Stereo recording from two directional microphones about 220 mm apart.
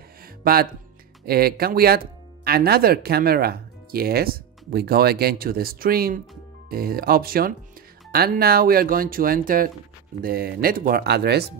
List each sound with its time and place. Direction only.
0.4 s speech: 40° right (ahead or behind)